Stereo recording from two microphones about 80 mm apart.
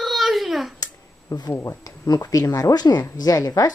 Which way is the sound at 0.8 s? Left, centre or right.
Left.